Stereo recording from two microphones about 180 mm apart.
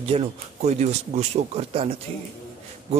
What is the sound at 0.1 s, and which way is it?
A man's voice, 35° right (ahead or behind).